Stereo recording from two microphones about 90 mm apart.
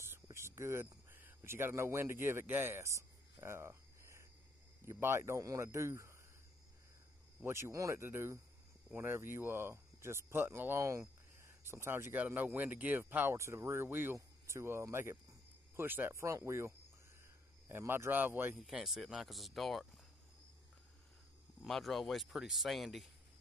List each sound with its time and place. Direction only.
0.0 s a sound: 30° right (ahead or behind)
4.8 s speech: 30° right (ahead or behind)
7.4 s speech: 30° right (ahead or behind)
18.6 s speech: 5° right (ahead or behind)
21.6 s speech: centre (ahead or behind)